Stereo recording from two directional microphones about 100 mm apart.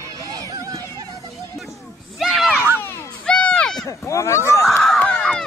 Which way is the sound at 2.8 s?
25° left (ahead or behind).